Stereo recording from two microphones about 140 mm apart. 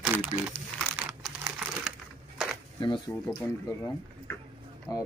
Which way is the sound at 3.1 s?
10° left (ahead or behind).